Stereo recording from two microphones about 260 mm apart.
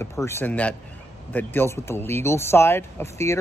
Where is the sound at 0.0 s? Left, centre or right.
Centre.